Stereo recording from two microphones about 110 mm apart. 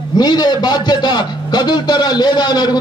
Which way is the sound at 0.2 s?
40° left (ahead or behind).